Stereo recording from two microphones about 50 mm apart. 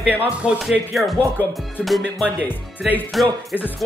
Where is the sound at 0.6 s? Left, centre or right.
Centre.